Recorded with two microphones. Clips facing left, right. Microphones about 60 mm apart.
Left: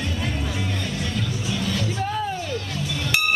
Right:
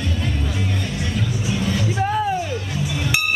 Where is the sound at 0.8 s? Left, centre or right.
Centre.